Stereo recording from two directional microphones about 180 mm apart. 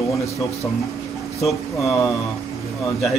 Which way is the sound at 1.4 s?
Centre (ahead or behind).